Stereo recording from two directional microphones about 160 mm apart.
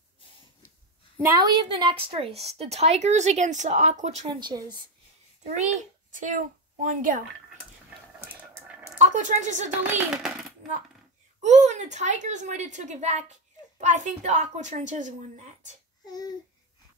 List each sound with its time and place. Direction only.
1.4 s speech: 30° right (ahead or behind)
4.3 s speech: 30° right (ahead or behind)
6.1 s a woman's voice: 55° right (ahead or behind)
8.3 s a sound: 10° right (ahead or behind)
8.9 s a woman's voice: 50° right (ahead or behind)
9.7 s a child's voice: 10° right (ahead or behind)
11.4 s a woman's voice: 45° right (ahead or behind)
16.1 s a sound: 25° left (ahead or behind)